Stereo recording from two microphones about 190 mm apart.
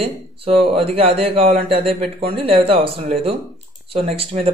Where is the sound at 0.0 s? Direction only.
30° right (ahead or behind).